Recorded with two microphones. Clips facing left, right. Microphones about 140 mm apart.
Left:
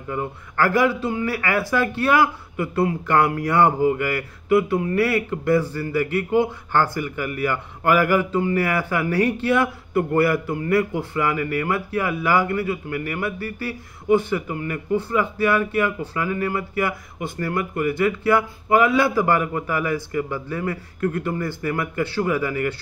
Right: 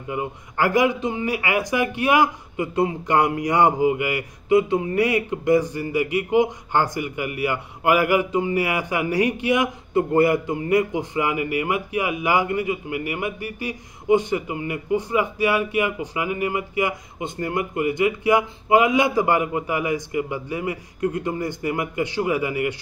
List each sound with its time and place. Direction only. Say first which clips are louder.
0.1 s speech: even; 15° right (ahead or behind)